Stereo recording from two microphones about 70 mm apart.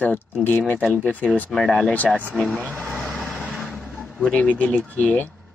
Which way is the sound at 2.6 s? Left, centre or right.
Right.